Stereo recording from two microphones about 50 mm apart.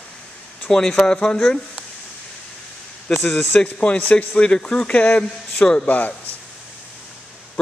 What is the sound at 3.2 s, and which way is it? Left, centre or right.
Speech, centre.